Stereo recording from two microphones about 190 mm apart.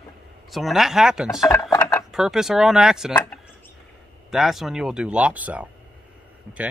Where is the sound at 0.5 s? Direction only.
Centre (ahead or behind).